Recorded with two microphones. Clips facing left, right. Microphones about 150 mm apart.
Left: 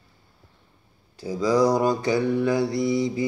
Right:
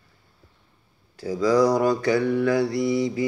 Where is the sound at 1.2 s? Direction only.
20° left (ahead or behind).